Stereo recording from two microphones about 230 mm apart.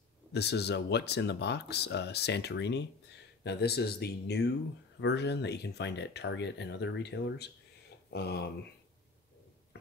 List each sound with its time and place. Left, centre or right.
0.3 s speech: left